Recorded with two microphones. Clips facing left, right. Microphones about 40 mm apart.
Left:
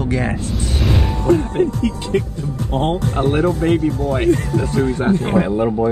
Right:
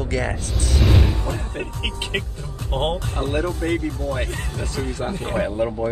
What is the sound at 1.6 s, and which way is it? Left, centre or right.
Speech, right.